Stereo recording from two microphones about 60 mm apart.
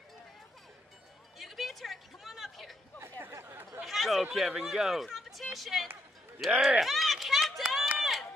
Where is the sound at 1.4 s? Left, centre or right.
Centre.